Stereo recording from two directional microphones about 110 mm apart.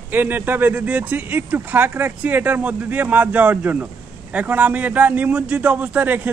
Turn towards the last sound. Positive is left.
turn(degrees=-15)  # may be behind; listen again after turning